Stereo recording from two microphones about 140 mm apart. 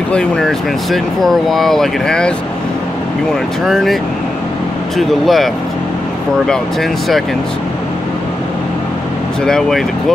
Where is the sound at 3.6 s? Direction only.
Centre (ahead or behind).